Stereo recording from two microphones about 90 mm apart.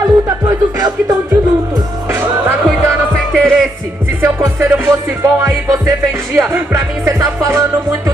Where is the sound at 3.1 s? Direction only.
5° left (ahead or behind).